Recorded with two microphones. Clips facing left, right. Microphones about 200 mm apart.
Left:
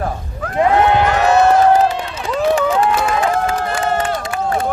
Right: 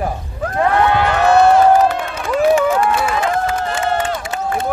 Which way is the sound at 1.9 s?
55° right (ahead or behind).